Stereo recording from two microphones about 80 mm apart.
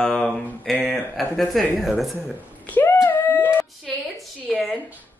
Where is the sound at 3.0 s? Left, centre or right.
Left.